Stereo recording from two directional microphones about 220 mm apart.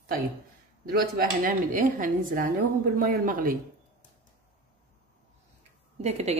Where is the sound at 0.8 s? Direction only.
40° right (ahead or behind).